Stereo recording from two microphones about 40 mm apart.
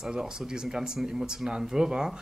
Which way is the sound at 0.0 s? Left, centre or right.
Centre.